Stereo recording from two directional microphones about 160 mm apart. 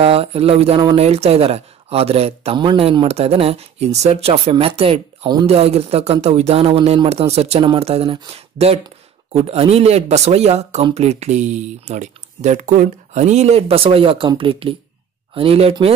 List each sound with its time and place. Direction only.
0.0 s speech: 35° right (ahead or behind)
5.5 s speech: 40° right (ahead or behind)